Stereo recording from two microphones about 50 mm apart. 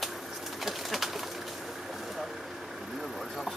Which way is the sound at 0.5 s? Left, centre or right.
Centre.